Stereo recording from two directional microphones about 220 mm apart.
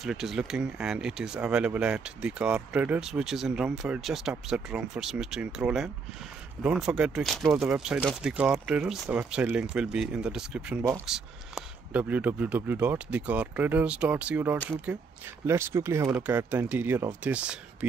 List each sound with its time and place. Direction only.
0.0 s speech: centre (ahead or behind)